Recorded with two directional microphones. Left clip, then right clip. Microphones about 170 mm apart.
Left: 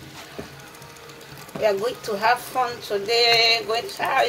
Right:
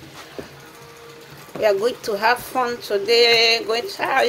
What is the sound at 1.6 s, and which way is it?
Speech, 45° right (ahead or behind).